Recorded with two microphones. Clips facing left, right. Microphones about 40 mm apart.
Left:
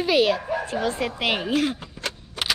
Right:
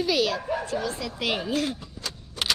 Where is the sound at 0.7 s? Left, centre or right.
Left.